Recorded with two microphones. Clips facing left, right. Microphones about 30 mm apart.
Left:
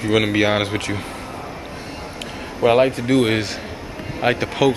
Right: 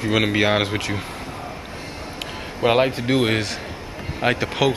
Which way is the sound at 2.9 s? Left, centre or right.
Right.